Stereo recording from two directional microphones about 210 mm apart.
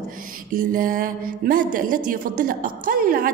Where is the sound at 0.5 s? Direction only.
40° right (ahead or behind).